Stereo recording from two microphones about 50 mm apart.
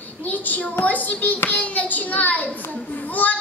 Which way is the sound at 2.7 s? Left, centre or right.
Left.